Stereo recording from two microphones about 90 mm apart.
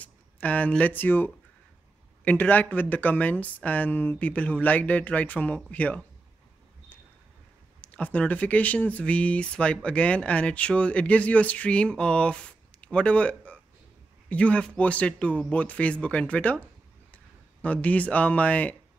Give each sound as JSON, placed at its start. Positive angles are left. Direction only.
{"t": 0.0, "sound": "speech", "side_deg": 15}
{"t": 7.8, "sound": "speech", "side_deg": 15}